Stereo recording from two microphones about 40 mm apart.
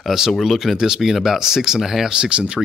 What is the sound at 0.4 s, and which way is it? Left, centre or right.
Speech, centre.